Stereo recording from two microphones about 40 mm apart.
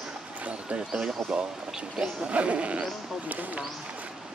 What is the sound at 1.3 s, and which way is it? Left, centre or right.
Speech, centre.